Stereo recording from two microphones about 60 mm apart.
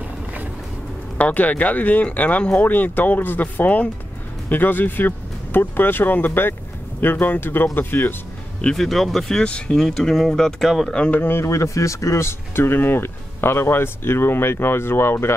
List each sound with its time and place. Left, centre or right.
1.1 s speech: left
8.7 s speech: centre
9.4 s speech: centre
11.1 s speech: left
11.4 s speech: left